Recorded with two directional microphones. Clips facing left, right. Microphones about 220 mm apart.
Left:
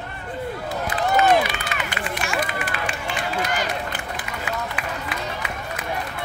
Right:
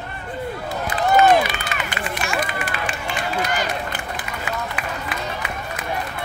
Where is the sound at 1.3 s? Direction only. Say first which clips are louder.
Right 1 dB; 45° right (ahead or behind).